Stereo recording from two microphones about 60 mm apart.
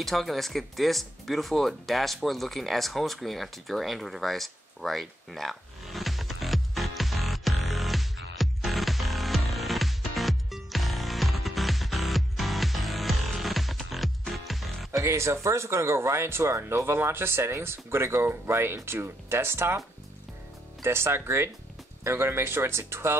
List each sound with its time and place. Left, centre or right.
0.0 s music: centre
15.0 s speech: right
20.8 s speech: right